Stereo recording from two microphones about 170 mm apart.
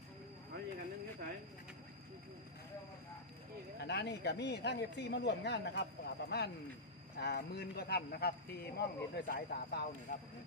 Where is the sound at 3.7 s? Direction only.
85° left; by 9.8 s 60° left (ahead or behind).